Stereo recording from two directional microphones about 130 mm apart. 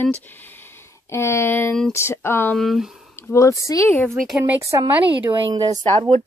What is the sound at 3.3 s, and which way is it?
Speech, 25° left (ahead or behind).